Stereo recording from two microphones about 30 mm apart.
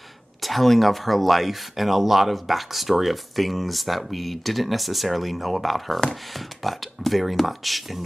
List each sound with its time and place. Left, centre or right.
0.4 s speech: centre